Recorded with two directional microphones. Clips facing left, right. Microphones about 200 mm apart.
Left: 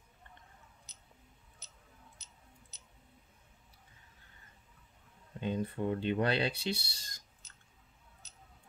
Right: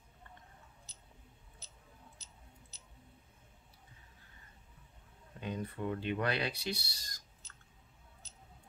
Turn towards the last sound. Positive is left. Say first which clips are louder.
# right 1 dB
turn(degrees=25)  # may be behind; listen again after turning